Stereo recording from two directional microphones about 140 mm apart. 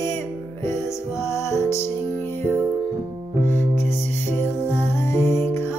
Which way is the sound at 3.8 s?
15° left (ahead or behind).